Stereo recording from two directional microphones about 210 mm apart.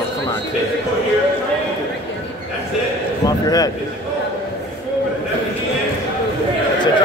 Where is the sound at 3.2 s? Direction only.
15° left (ahead or behind).